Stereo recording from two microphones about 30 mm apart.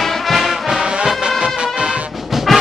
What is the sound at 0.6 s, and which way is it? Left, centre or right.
Music, right.